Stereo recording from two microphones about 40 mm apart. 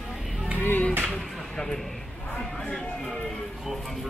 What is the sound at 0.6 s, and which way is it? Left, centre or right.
Music, left.